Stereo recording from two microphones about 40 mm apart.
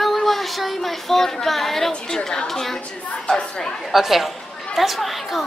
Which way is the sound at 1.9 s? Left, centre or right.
Centre.